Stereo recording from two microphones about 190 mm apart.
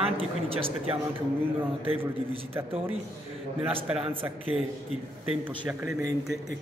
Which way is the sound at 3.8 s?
5° right (ahead or behind).